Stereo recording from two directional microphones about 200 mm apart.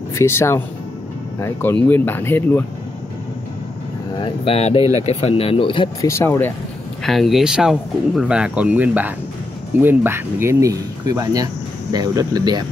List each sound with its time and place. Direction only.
0.1 s speech: 15° left (ahead or behind)
4.2 s speech: 30° left (ahead or behind); by 6.5 s 10° left (ahead or behind)
7.0 s speech: centre (ahead or behind); by 12.6 s 20° right (ahead or behind)